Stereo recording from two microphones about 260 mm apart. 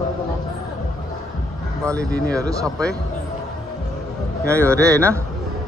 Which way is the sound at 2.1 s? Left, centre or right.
Centre.